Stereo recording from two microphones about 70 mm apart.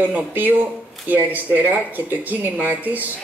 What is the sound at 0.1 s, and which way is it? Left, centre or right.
A man's voice, right.